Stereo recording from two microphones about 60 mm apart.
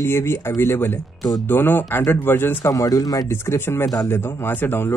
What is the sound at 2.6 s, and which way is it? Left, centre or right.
Speech, left.